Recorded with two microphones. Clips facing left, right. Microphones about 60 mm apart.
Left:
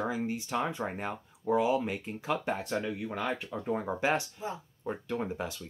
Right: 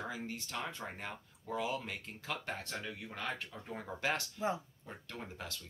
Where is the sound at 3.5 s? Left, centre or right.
Left.